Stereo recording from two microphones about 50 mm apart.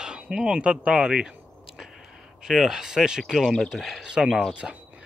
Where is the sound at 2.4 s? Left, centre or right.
Centre.